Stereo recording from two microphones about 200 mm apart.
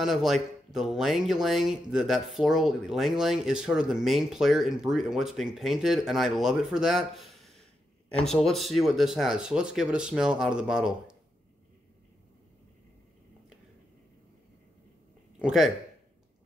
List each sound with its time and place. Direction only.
0.0 s speech: centre (ahead or behind)
15.3 s speech: centre (ahead or behind)